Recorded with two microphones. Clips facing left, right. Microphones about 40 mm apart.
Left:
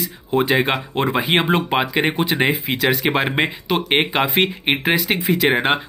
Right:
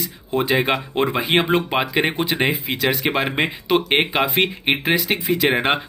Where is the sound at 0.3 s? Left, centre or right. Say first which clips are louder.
Left 1 dB; centre.